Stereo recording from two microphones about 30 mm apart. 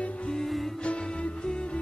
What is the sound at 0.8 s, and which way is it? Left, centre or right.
Music, left.